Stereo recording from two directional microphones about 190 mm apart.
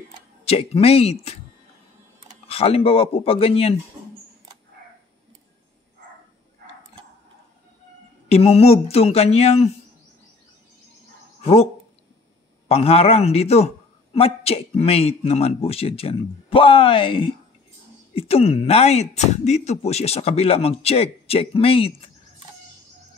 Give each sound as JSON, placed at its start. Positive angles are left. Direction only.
{"t": 0.5, "sound": "speech", "side_deg": 30}
{"t": 2.4, "sound": "speech", "side_deg": 30}
{"t": 8.3, "sound": "speech", "side_deg": 30}
{"t": 11.4, "sound": "speech", "side_deg": 35}